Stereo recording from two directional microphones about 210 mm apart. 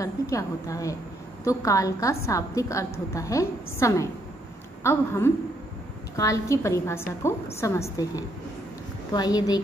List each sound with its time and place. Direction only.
0.0 s a woman's voice: 15° left (ahead or behind)